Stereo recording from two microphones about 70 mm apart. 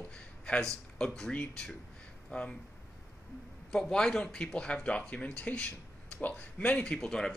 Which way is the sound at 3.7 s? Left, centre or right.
Centre.